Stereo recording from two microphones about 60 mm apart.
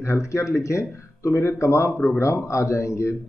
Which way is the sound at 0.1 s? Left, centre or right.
Left.